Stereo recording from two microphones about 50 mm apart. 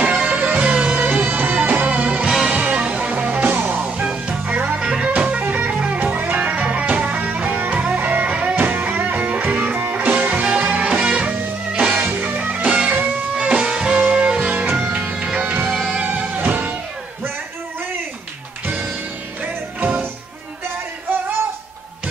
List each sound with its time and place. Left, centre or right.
0.0 s music: right
0.6 s music: right
2.2 s music: centre
2.5 s music: right
4.0 s music: right
5.4 s music: right
7.5 s music: right
7.8 s music: right
12.2 s music: right
12.6 s music: right
15.6 s music: centre
16.3 s music: right